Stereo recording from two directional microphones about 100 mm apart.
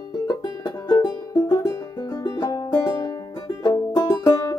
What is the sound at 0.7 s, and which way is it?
Music, 40° left (ahead or behind).